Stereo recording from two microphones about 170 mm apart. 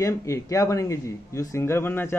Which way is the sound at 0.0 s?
20° left (ahead or behind).